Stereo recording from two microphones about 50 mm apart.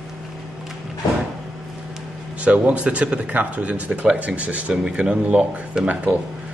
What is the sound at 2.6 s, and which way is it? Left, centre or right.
Speech, right.